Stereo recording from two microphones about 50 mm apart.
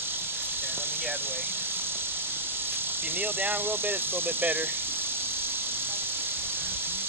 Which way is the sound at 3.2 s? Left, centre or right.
Right.